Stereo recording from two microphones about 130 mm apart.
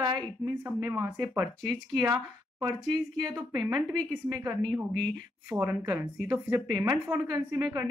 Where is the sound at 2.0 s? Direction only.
30° right (ahead or behind).